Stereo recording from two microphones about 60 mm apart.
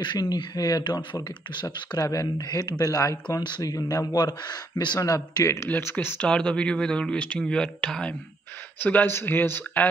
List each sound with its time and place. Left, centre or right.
0.2 s speech: left
2.0 s a man's voice: left
5.7 s speech: left
6.2 s speech: centre
8.7 s speech: left